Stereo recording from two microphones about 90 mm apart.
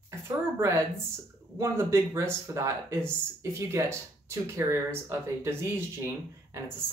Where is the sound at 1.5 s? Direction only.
35° right (ahead or behind).